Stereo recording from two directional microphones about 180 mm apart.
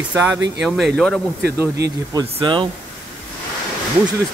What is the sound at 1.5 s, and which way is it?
Speech, 15° right (ahead or behind).